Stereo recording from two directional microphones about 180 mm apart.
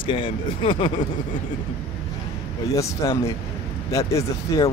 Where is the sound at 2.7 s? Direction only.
15° left (ahead or behind).